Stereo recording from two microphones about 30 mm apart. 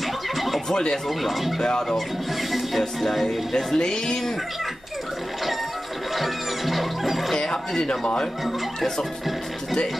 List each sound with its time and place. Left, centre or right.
1.0 s speech: centre
1.6 s speech: left
3.0 s speech: centre
3.3 s speech: left
6.1 s music: centre
7.3 s speech: left